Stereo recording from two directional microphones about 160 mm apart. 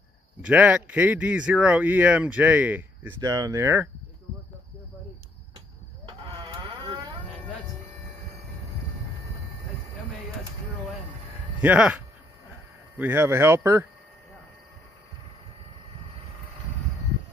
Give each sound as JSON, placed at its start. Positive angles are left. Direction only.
{"t": 0.4, "sound": "speech", "side_deg": -10}
{"t": 3.2, "sound": "speech", "side_deg": -25}
{"t": 6.0, "sound": "a sound", "side_deg": -30}
{"t": 11.6, "sound": "speech", "side_deg": -10}